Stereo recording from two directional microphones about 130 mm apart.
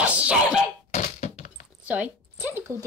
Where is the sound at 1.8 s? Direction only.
10° right (ahead or behind).